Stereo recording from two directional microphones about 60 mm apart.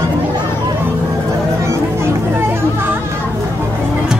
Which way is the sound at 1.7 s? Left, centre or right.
Right.